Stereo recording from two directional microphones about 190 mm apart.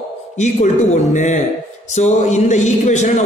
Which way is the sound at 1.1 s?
40° left (ahead or behind).